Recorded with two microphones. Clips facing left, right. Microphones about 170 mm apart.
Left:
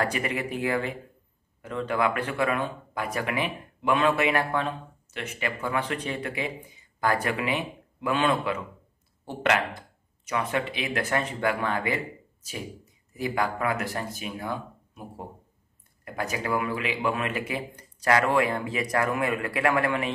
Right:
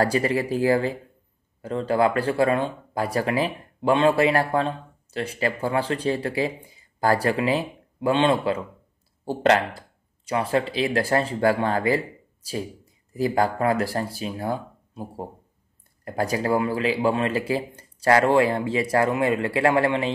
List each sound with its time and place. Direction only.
0.0 s speech: 35° right (ahead or behind)
13.1 s speech: 35° right (ahead or behind)